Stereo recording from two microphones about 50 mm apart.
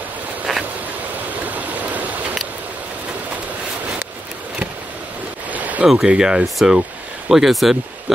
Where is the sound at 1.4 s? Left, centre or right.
Right.